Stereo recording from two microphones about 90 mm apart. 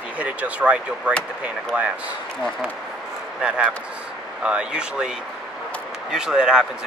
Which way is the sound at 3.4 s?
15° right (ahead or behind).